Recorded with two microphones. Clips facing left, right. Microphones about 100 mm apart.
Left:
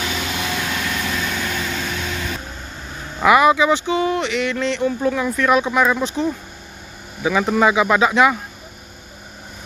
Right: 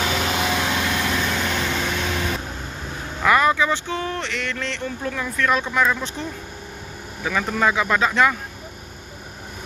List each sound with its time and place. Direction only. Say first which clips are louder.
0.3 s vehicle: right 2 dB; 25° right (ahead or behind)
3.2 s speech: left 4 dB; 15° left (ahead or behind)
7.2 s speech: left 5 dB; 10° left (ahead or behind)